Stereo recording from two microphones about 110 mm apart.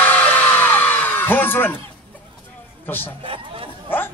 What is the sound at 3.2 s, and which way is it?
Chatter, 55° right (ahead or behind).